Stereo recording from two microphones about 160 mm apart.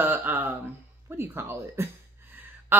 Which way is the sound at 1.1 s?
15° right (ahead or behind).